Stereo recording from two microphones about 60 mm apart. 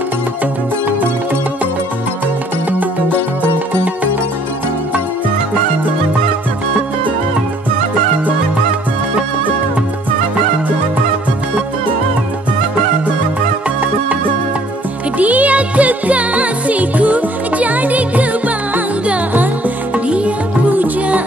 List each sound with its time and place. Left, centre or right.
15.1 s music: right